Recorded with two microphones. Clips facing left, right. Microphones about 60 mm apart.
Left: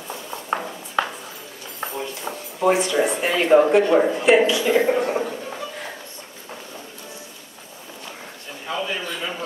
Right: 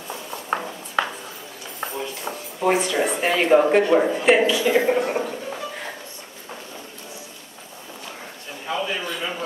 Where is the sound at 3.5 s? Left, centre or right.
Centre.